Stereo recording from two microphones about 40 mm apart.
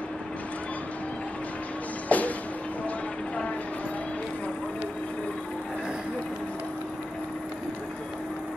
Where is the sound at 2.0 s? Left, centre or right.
Left.